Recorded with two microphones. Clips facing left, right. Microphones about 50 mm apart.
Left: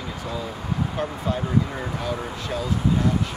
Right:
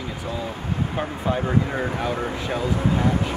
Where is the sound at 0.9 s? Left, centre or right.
Right.